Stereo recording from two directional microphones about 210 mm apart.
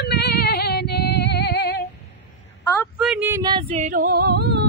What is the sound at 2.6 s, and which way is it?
Speech, 10° left (ahead or behind).